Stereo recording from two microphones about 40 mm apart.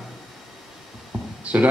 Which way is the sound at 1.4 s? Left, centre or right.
Right.